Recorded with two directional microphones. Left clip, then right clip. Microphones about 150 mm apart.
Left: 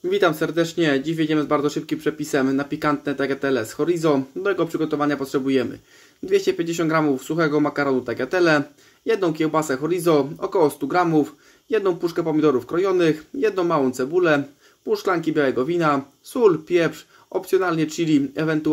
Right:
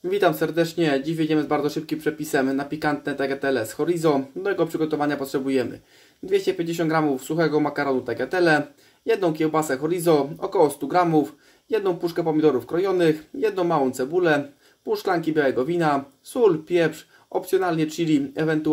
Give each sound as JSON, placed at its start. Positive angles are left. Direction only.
{"t": 0.1, "sound": "speech", "side_deg": 25}